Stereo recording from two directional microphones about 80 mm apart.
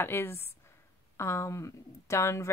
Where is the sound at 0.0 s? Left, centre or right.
Left.